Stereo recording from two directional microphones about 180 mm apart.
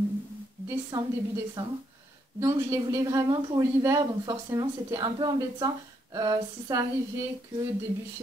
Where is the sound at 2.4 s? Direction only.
15° right (ahead or behind).